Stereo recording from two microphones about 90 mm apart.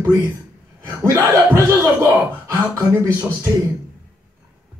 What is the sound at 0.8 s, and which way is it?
Speech, 35° right (ahead or behind).